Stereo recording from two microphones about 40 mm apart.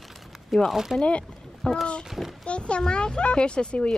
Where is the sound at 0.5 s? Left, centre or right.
Centre.